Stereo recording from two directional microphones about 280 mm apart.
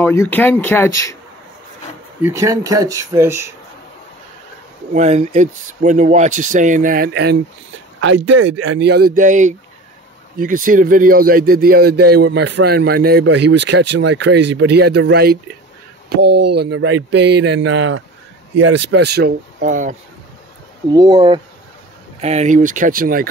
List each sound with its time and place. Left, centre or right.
0.0 s speech: centre
2.2 s speech: centre
4.9 s a man's voice: right
16.5 s a man's voice: right
20.9 s speech: centre; by 23.2 s right